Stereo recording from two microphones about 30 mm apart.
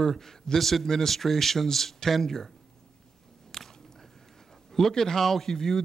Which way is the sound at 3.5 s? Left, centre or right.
Centre.